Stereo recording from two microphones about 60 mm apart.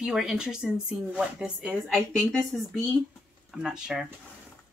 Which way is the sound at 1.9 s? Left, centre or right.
Centre.